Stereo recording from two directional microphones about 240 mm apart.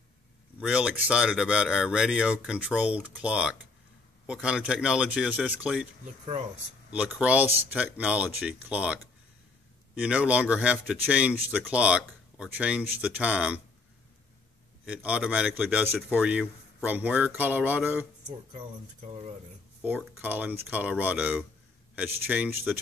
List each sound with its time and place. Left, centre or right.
0.6 s speech: centre
6.9 s speech: centre
14.9 s speech: centre
18.5 s speech: right
19.8 s speech: centre